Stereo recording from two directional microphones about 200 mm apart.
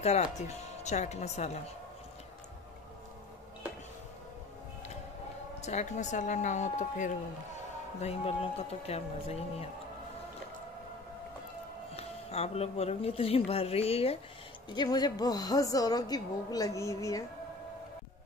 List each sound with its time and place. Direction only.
0.0 s speech: 35° left (ahead or behind)
5.6 s speech: 35° left (ahead or behind)
11.9 s a woman's voice: 30° left (ahead or behind); by 17.2 s 15° left (ahead or behind)